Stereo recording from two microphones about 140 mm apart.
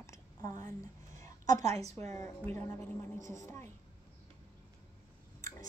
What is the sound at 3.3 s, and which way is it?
Speech, 20° left (ahead or behind).